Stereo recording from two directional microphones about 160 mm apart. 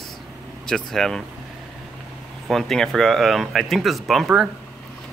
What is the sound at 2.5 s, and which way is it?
Speech, centre (ahead or behind).